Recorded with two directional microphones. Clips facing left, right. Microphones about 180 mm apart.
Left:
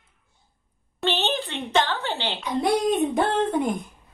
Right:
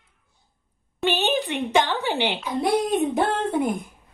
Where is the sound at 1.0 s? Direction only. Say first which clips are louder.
Right 3 dB; 15° right (ahead or behind).